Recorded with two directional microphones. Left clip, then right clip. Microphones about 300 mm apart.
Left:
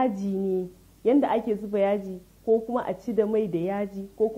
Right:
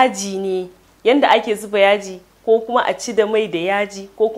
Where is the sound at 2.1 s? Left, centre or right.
Right.